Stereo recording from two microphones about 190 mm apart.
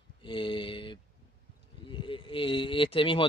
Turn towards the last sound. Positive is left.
turn(degrees=25)  # may be behind; listen again after turning